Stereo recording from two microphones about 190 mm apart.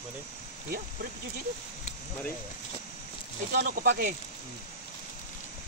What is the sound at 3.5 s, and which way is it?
Speech, 50° right (ahead or behind).